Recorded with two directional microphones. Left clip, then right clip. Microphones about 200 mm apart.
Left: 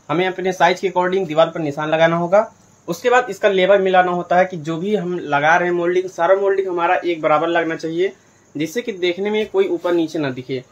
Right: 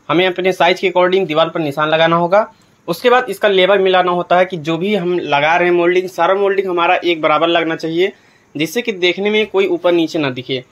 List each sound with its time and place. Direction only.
0.1 s speech: 20° right (ahead or behind)